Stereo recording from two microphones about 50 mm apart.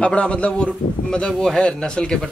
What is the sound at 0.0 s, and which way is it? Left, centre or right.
A man's voice, left.